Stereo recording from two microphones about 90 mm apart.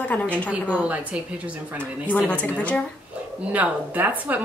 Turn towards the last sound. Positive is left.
turn(degrees=-20)  # may be behind; listen again after turning